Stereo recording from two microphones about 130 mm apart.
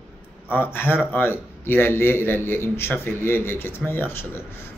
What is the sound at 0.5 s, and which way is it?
Speech, 15° left (ahead or behind).